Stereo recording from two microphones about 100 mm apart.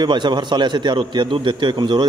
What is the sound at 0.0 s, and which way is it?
Speech, 50° right (ahead or behind).